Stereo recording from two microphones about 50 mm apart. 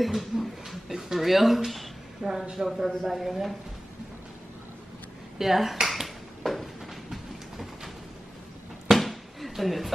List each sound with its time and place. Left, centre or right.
0.0 s speech: centre
2.2 s speech: right
2.5 s speech: centre
5.4 s dishes: centre
8.9 s a sound: centre